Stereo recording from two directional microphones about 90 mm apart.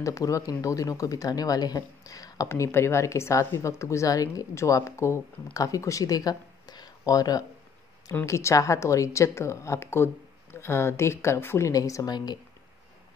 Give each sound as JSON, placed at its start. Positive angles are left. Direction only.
{"t": 0.0, "sound": "speech", "side_deg": 35}